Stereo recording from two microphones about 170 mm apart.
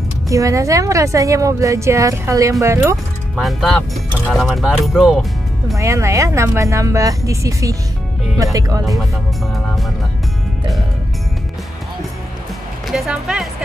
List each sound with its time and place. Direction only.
0.3 s a woman's voice: 20° right (ahead or behind)
3.3 s speech: centre (ahead or behind)
5.8 s a woman's voice: 15° right (ahead or behind)
8.8 s speech: centre (ahead or behind)
12.8 s speech: centre (ahead or behind)